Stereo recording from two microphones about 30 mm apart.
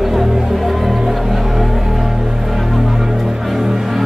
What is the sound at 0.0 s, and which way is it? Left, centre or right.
Music, centre.